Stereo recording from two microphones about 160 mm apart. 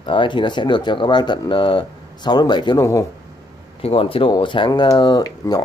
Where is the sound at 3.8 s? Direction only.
35° left (ahead or behind).